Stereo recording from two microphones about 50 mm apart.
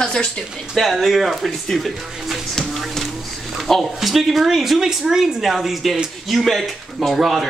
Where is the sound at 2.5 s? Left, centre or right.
Centre.